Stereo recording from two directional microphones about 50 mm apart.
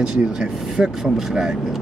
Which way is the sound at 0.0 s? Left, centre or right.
Centre.